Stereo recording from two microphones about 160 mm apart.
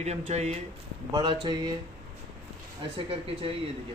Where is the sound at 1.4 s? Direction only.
25° right (ahead or behind).